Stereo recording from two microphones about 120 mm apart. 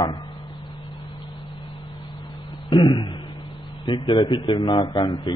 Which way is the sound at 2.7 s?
40° left (ahead or behind).